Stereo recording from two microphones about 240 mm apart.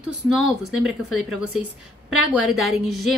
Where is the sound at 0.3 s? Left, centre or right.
Centre.